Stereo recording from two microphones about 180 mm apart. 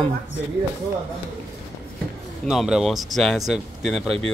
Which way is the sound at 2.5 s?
5° right (ahead or behind).